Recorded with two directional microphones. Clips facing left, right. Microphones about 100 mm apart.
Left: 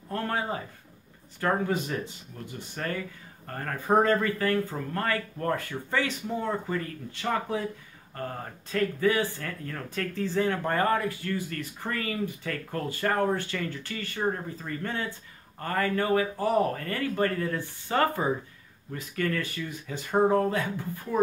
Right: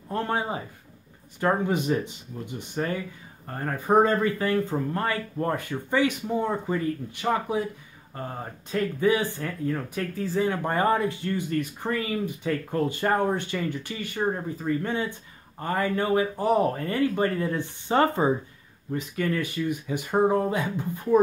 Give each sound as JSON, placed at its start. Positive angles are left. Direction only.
{"t": 0.1, "sound": "speech", "side_deg": -20}